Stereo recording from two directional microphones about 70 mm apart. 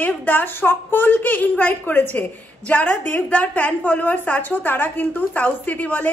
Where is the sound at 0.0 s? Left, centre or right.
Left.